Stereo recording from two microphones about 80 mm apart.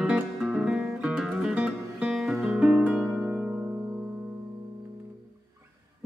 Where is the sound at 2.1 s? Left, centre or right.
Centre.